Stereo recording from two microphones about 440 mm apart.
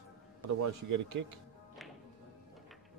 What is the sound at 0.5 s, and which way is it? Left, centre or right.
Speech, right.